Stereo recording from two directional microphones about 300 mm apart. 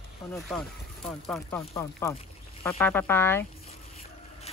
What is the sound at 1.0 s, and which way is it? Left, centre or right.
Speech, centre.